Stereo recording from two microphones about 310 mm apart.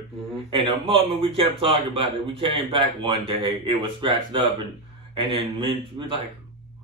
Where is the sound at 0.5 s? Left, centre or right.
Centre.